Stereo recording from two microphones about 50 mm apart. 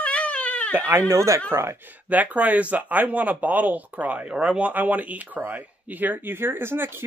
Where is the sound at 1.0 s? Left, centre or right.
Right.